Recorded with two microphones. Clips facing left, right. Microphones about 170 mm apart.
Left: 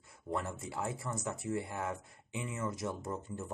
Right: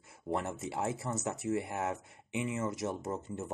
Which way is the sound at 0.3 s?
25° right (ahead or behind).